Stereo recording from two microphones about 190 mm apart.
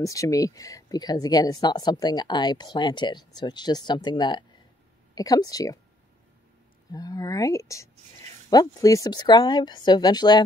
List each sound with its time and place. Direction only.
0.0 s speech: 15° left (ahead or behind)
6.9 s speech: 20° left (ahead or behind)